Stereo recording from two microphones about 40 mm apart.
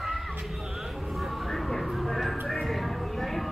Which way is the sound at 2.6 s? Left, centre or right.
Centre.